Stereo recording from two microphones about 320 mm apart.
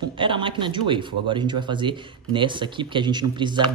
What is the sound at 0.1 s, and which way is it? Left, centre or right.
Speech, centre.